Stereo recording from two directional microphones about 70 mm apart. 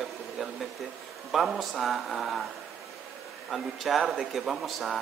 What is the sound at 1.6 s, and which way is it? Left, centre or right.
Speech, centre.